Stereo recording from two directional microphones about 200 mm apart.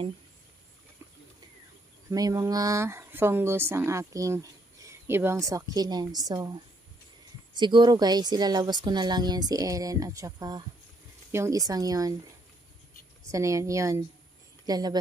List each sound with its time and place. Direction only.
2.0 s speech: 15° right (ahead or behind)
7.5 s speech: 20° right (ahead or behind)
13.3 s speech: 15° right (ahead or behind)